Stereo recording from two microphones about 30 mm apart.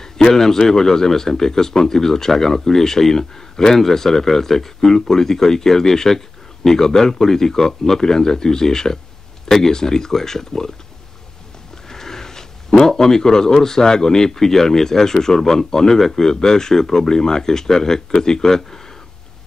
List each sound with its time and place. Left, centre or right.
0.0 s speech: centre
11.9 s speech: centre